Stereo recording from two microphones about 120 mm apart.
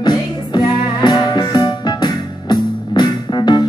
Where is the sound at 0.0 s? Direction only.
35° left (ahead or behind).